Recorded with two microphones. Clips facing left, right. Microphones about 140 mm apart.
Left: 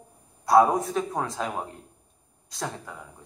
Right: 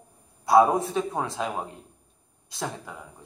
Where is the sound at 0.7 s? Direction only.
25° right (ahead or behind).